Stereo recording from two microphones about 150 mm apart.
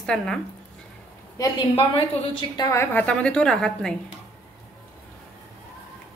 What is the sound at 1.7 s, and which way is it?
Speech, 35° left (ahead or behind).